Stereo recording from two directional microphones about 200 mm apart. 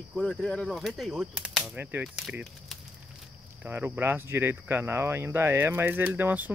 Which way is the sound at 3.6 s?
10° right (ahead or behind).